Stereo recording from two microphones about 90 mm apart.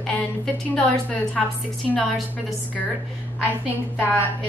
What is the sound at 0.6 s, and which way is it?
Speech, 15° left (ahead or behind).